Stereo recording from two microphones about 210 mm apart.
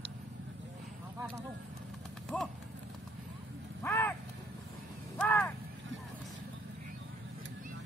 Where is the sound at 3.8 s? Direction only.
10° left (ahead or behind).